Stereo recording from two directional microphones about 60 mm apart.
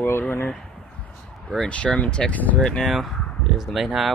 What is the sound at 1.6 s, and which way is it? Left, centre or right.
Speech, centre.